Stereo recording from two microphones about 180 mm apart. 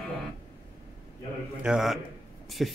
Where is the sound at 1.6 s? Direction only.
5° right (ahead or behind).